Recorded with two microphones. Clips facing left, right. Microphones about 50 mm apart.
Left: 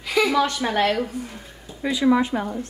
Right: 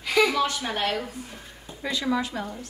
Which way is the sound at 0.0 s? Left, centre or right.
Centre.